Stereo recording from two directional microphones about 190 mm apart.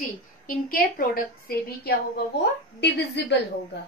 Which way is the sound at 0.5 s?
50° left (ahead or behind).